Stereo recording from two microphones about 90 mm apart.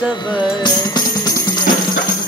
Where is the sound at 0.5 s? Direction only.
50° left (ahead or behind).